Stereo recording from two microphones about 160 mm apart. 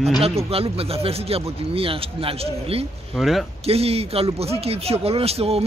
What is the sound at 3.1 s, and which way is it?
Speech, centre (ahead or behind).